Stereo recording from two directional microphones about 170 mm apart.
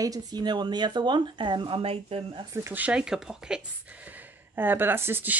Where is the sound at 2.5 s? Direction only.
15° right (ahead or behind).